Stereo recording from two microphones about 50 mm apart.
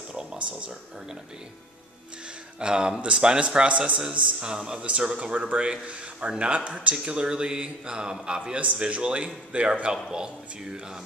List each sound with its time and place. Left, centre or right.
0.4 s speech: right
2.6 s speech: centre